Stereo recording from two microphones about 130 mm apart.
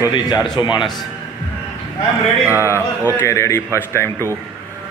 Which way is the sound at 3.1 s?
20° left (ahead or behind).